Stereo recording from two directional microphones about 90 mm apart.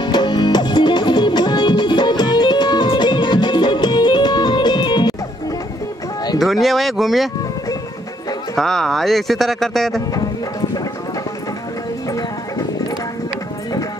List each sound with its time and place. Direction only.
0.0 s music: 55° left (ahead or behind)
6.4 s speech: centre (ahead or behind)
8.5 s speech: 5° left (ahead or behind)
12.1 s music: 40° left (ahead or behind)